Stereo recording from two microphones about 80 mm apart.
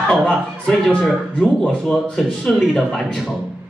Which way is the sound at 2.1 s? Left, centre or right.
Centre.